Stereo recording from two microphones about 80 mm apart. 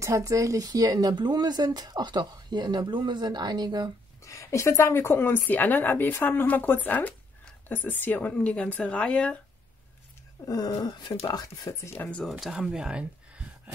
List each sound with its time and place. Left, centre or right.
0.0 s speech: right
4.2 s a woman's voice: left; by 9.4 s centre
10.4 s speech: left
11.4 s speech: left
12.0 s speech: centre
12.3 s speech: centre